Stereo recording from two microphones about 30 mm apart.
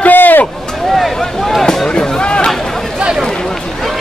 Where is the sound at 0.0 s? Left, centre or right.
Left.